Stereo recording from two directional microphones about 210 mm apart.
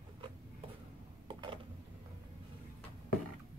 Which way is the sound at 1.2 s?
25° right (ahead or behind).